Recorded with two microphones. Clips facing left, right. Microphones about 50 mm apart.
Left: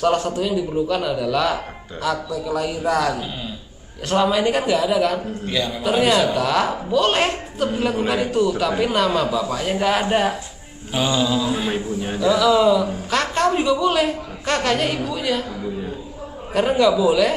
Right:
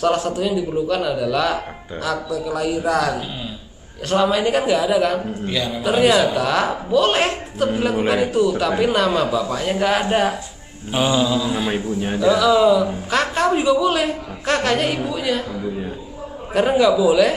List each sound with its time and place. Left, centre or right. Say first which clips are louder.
0.0 s a man's voice: even; centre
10.9 s mantra: right 2 dB; centre
11.2 s a man's voice: right 1 dB; centre
11.7 s a man's voice: right 2 dB; centre
12.2 s a man's voice: right 1 dB; centre
16.5 s a man's voice: right 1 dB; centre